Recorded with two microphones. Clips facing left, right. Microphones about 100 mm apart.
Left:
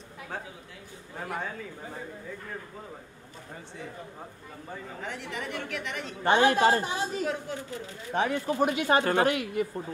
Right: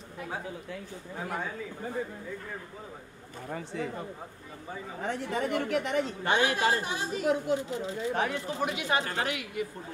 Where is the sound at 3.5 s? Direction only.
90° right.